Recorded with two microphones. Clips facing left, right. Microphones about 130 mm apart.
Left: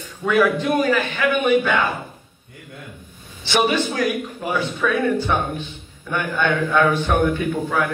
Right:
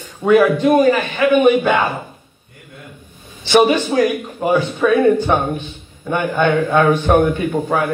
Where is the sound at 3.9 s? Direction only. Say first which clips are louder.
Right 6 dB; 50° right (ahead or behind).